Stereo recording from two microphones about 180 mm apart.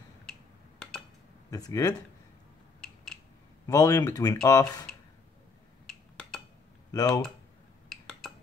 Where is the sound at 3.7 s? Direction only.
20° left (ahead or behind).